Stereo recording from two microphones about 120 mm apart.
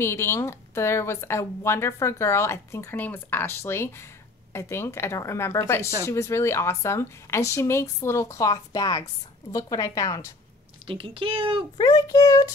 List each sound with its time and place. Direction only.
0.0 s speech: 20° left (ahead or behind)
10.9 s a woman's voice: 50° right (ahead or behind)
11.7 s a child's voice: 35° left (ahead or behind)